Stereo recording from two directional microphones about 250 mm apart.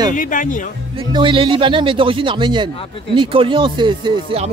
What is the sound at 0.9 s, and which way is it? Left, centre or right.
A man's voice, centre.